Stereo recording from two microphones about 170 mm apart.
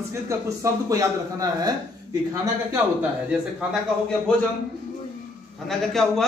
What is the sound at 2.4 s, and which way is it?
A man's voice, 10° right (ahead or behind).